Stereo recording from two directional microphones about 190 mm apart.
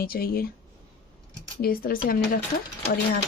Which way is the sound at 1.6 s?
50° left (ahead or behind).